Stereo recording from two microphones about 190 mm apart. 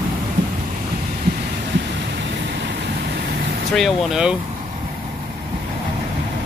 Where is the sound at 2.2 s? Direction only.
60° right (ahead or behind).